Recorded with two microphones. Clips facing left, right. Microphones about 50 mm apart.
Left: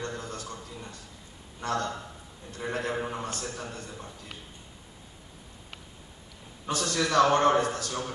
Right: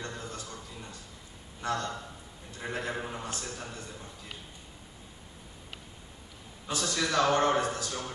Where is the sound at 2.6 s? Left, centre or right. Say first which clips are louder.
Left 3 dB; centre.